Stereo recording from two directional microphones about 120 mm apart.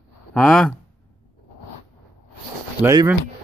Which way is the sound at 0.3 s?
5° left (ahead or behind).